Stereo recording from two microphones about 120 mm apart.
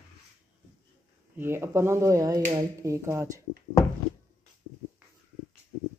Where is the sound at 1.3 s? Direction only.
20° right (ahead or behind).